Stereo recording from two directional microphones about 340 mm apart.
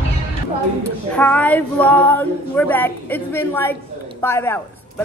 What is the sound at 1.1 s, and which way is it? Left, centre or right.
A woman's voice, centre.